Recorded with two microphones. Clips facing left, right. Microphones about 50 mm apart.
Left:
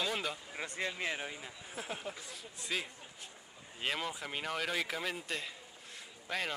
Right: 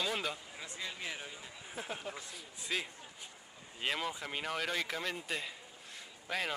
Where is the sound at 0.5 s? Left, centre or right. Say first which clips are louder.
Left 5 dB; left.